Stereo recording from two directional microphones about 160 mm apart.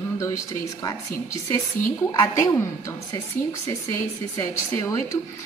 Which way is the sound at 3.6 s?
20° left (ahead or behind).